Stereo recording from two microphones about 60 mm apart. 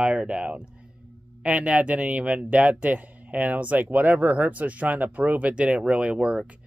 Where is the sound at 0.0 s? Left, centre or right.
Centre.